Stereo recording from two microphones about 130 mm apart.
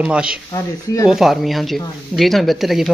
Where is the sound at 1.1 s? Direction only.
Centre (ahead or behind).